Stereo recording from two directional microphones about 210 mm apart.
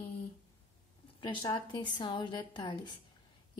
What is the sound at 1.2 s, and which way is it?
A woman's voice, 20° left (ahead or behind).